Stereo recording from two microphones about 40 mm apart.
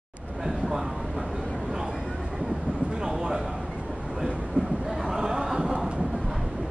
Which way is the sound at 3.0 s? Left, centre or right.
Centre.